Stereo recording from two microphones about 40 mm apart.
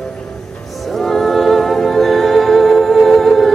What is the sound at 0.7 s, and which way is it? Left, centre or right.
Music, centre.